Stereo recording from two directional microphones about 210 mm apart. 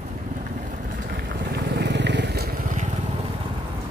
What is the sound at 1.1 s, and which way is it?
Vehicle, 45° right (ahead or behind).